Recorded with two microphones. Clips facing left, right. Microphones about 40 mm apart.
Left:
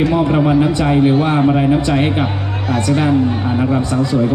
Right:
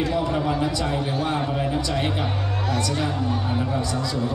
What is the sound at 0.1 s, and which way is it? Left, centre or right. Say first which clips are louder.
A man's voice: left 10 dB; left.